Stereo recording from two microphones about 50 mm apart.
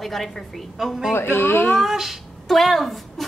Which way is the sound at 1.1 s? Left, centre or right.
Left.